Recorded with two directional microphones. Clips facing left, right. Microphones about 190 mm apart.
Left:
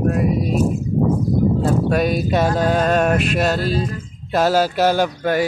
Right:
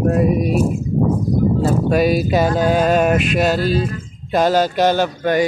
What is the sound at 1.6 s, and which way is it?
Speech, 5° right (ahead or behind).